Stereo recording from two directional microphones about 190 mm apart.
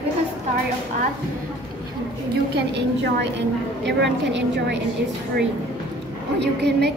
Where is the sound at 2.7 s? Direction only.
65° right (ahead or behind).